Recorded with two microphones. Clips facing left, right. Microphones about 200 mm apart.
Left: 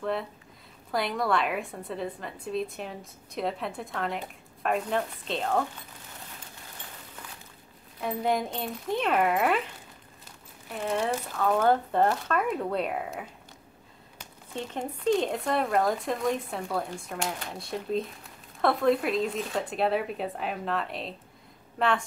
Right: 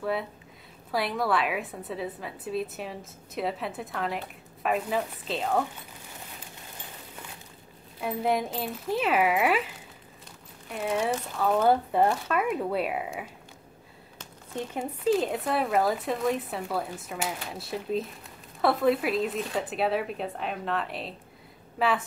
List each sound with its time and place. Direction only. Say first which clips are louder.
0.0 s a woman's voice: right 1 dB; 5° right (ahead or behind)
8.0 s speech: right 1 dB; 5° right (ahead or behind)
10.7 s speech: right 1 dB; 5° right (ahead or behind)
14.5 s a woman's voice: right 1 dB; 10° right (ahead or behind)